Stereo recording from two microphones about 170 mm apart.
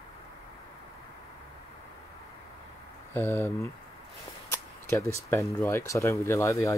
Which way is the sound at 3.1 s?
15° left (ahead or behind).